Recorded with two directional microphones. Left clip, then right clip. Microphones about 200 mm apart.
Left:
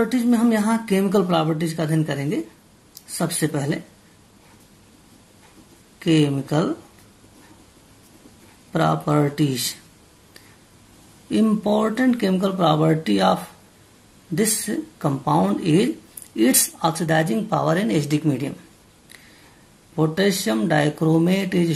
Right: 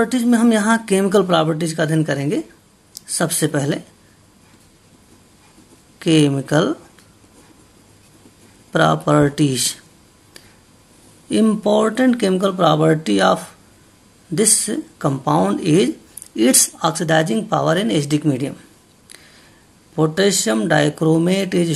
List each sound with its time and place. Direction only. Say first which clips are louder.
0.0 s speech: right 4 dB; 25° right (ahead or behind)
5.9 s speech: right 4 dB; 35° right (ahead or behind)
8.7 s speech: right 5 dB; 35° right (ahead or behind)
11.2 s speech: right 4 dB; 30° right (ahead or behind)
20.0 s speech: right 4 dB; 25° right (ahead or behind)